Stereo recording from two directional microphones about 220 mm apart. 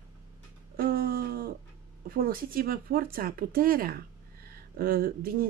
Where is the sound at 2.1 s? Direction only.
40° right (ahead or behind).